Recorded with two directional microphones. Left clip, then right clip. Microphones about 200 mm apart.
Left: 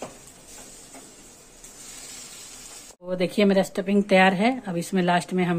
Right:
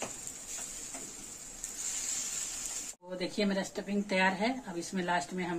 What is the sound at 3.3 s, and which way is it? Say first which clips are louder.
Speech: left 13 dB; 50° left (ahead or behind).